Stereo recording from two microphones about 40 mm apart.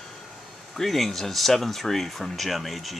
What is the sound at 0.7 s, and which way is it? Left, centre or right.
Speech, centre.